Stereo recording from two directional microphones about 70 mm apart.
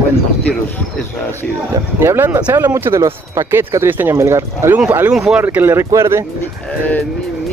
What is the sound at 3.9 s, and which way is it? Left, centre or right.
Speech, right.